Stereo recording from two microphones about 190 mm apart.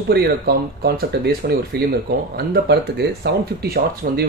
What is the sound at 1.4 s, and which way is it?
Speech, 50° right (ahead or behind).